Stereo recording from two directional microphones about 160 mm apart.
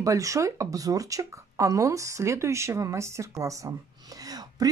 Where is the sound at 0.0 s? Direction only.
20° right (ahead or behind).